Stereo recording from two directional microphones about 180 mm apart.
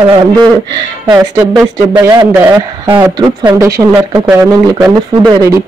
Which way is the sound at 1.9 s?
20° right (ahead or behind).